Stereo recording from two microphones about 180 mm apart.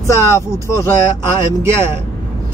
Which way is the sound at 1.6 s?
15° right (ahead or behind).